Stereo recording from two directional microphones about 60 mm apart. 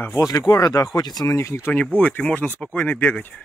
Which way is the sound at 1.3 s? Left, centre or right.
Left.